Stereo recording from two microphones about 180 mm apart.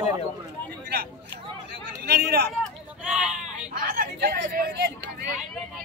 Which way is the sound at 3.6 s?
50° right (ahead or behind).